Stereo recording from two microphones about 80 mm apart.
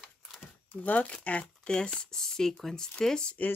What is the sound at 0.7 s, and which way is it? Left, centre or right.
Speech, centre.